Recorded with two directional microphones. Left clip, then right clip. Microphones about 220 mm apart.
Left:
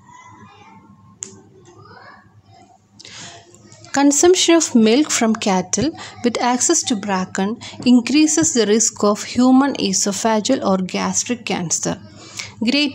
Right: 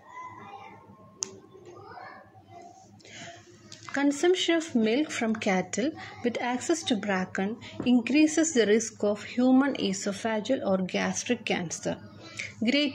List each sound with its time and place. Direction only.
3.0 s a sound: 20° left (ahead or behind)
3.9 s speech: 30° left (ahead or behind)
7.4 s speech: 30° left (ahead or behind)